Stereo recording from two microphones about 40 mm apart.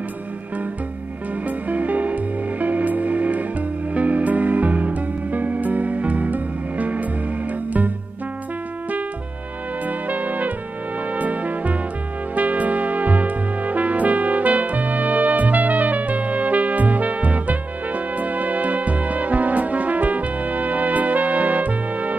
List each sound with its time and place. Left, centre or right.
1.7 s music: right
9.8 s music: right